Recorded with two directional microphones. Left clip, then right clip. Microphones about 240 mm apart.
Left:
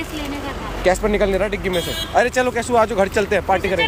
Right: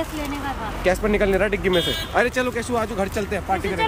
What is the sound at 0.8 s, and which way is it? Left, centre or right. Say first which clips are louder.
A woman's voice: left 3 dB; centre.